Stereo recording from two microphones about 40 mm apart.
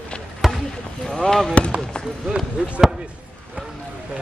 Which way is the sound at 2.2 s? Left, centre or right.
Centre.